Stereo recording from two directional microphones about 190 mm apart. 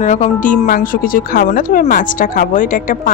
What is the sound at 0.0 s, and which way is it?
Speech, 40° left (ahead or behind).